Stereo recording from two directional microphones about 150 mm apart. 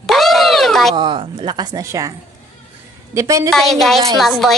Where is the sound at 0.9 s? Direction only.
30° right (ahead or behind).